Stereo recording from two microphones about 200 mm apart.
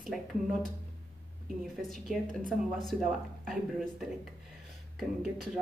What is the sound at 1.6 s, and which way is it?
Speech, centre (ahead or behind).